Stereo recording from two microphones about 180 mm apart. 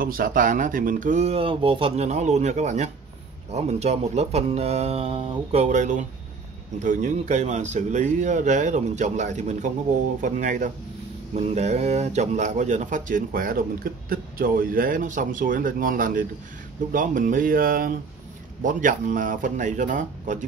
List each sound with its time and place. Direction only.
0.0 s speech: 50° right (ahead or behind)